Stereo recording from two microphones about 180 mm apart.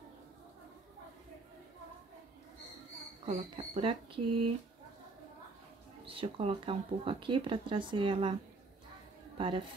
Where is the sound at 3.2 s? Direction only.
35° right (ahead or behind).